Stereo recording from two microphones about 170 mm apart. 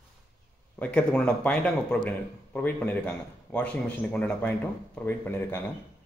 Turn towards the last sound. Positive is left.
turn(degrees=10)  # may be behind; listen again after turning